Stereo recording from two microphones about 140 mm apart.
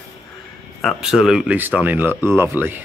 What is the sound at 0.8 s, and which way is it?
Speech, 5° right (ahead or behind).